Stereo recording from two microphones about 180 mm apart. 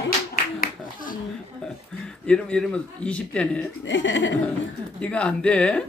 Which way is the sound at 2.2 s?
5° left (ahead or behind).